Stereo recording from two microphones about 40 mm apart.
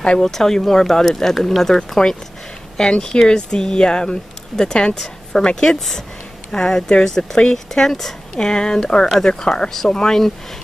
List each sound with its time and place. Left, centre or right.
0.2 s a woman's voice: centre